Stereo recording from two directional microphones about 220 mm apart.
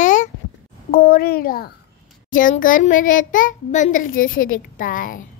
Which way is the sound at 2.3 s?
40° left (ahead or behind).